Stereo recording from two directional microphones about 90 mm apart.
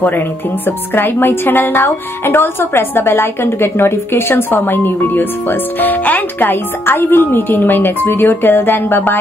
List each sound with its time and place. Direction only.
0.7 s speech: 25° left (ahead or behind)